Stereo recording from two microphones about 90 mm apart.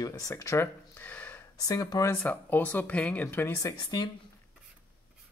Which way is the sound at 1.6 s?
40° left (ahead or behind).